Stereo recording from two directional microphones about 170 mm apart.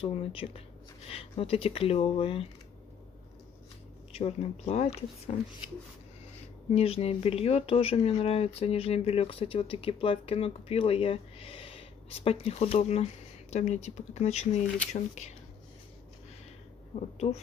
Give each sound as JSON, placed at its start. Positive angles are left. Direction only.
{"t": 0.0, "sound": "speech", "side_deg": 35}
{"t": 4.1, "sound": "speech", "side_deg": 35}
{"t": 6.7, "sound": "speech", "side_deg": 35}
{"t": 16.9, "sound": "a woman's voice", "side_deg": 45}